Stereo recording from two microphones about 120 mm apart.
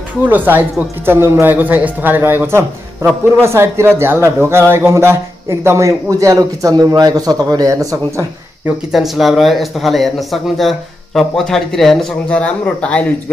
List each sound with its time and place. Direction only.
0.2 s speech: 15° right (ahead or behind)
8.9 s speech: centre (ahead or behind)